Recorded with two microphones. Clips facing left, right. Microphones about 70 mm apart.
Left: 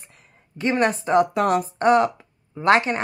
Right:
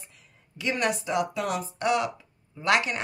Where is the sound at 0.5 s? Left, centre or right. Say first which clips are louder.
Left 6 dB; left.